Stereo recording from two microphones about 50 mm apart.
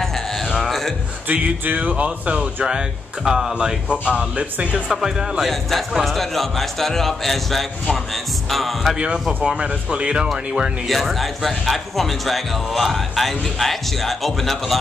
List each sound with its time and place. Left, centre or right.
0.7 s a sound: centre
1.3 s speech: right
2.0 s speech: right
3.3 s speech: centre
3.5 s speech: right
5.4 s a man's voice: centre
9.4 s speech: centre
10.9 s a man's voice: centre